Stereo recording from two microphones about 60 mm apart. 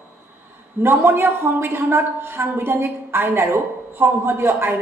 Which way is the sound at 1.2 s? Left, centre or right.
Right.